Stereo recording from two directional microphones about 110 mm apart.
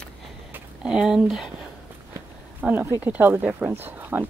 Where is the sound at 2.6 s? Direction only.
15° right (ahead or behind).